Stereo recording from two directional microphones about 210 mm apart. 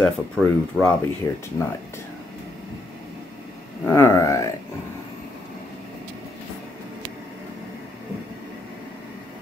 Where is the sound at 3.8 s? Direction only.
15° left (ahead or behind).